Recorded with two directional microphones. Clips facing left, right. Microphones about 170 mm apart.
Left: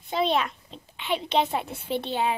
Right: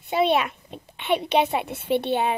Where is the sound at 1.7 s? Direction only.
60° right (ahead or behind).